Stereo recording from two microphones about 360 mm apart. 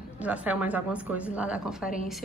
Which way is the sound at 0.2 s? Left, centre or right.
Centre.